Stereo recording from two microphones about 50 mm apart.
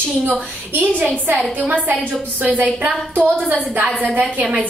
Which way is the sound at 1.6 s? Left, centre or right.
Right.